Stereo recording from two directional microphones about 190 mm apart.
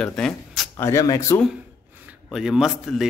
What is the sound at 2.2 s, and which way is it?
Speech, centre (ahead or behind).